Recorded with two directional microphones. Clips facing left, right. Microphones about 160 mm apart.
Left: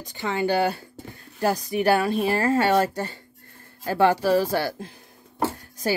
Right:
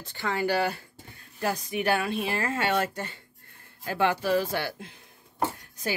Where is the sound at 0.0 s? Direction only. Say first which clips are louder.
Left 3 dB; 15° left (ahead or behind); by 5.0 s 40° left (ahead or behind).